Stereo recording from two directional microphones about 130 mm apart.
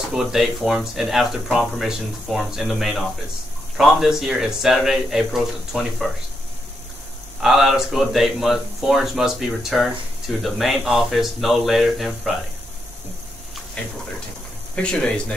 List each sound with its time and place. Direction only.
0.1 s speech: 5° right (ahead or behind)
7.3 s speech: 5° right (ahead or behind)
13.8 s speech: 10° left (ahead or behind)